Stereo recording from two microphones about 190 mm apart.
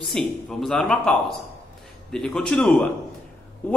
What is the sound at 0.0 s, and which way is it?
A man's voice, centre (ahead or behind).